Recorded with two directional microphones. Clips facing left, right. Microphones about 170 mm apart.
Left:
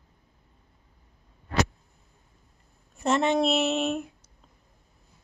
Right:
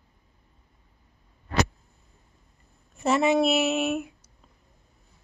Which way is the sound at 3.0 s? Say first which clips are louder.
Right 2 dB; 5° right (ahead or behind).